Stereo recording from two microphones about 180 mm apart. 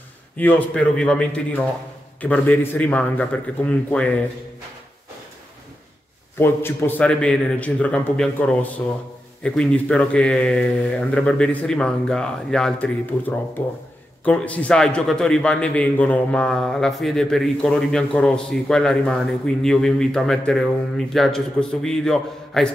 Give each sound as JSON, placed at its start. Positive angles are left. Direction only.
{"t": 0.4, "sound": "a man's voice", "side_deg": 10}
{"t": 6.3, "sound": "a man's voice", "side_deg": 15}